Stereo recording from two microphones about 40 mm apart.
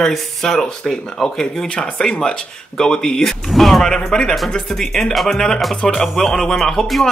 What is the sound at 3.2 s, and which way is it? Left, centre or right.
Speech, centre.